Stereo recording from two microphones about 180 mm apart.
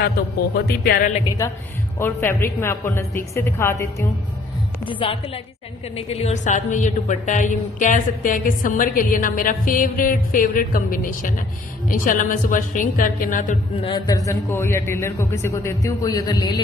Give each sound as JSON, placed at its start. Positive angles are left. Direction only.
{"t": 0.7, "sound": "speech", "side_deg": 60}
{"t": 1.4, "sound": "a man's voice", "side_deg": 15}
{"t": 4.8, "sound": "a woman's voice", "side_deg": 30}
{"t": 13.8, "sound": "a man's voice", "side_deg": 20}